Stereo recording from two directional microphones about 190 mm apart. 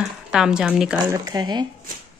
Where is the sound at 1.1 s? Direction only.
20° right (ahead or behind).